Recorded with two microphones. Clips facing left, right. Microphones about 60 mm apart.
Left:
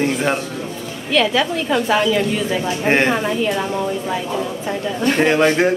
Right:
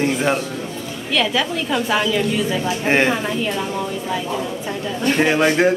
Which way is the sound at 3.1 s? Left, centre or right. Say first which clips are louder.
Left 3 dB; centre.